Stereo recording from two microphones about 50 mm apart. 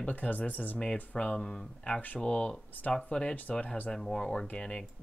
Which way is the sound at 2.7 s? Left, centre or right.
Left.